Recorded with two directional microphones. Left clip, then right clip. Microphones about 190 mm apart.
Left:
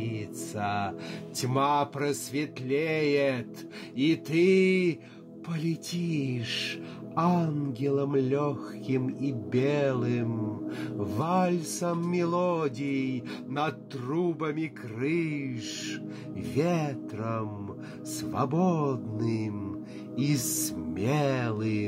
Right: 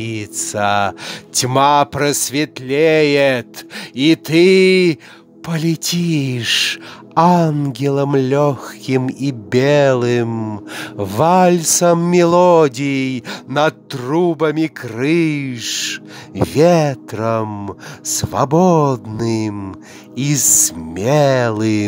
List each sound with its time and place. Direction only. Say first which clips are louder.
0.0 s speech: right 12 dB; 45° right (ahead or behind)